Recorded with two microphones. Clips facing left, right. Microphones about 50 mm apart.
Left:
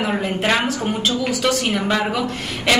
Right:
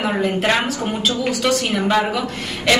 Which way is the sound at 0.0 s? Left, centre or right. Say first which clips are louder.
Right 2 dB; centre.